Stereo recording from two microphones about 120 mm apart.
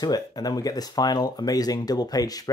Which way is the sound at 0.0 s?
35° left (ahead or behind).